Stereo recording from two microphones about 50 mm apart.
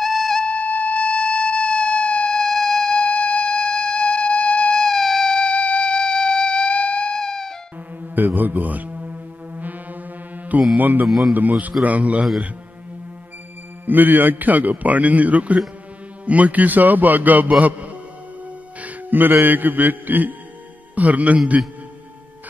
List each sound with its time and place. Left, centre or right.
0.0 s music: centre
0.4 s music: left
8.0 s music: right
10.8 s a man's voice: right
11.1 s a man's voice: centre
11.8 s a man's voice: right
13.8 s a man's voice: right
18.8 s music: right
19.4 s a man's voice: right